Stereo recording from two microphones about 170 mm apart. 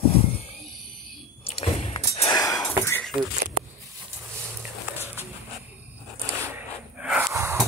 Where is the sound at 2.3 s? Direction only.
20° left (ahead or behind).